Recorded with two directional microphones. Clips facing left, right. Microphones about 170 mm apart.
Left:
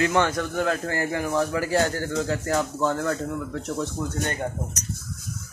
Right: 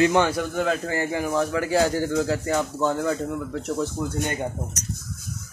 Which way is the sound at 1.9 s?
10° right (ahead or behind).